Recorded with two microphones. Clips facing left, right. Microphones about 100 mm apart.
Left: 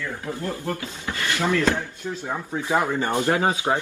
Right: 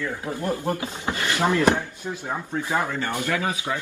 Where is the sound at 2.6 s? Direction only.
20° left (ahead or behind).